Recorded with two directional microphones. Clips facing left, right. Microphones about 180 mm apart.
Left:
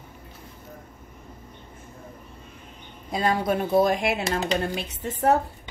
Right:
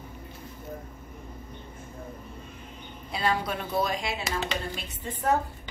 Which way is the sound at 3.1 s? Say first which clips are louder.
Left 5 dB; 45° left (ahead or behind).